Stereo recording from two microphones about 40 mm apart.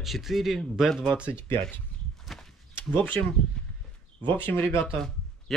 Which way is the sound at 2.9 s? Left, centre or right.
Left.